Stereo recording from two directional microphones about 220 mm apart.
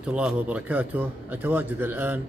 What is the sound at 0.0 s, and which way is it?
A man's voice, 5° right (ahead or behind).